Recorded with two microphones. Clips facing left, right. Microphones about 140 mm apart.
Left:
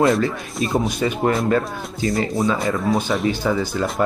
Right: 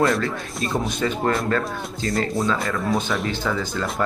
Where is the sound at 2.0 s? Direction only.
Centre (ahead or behind).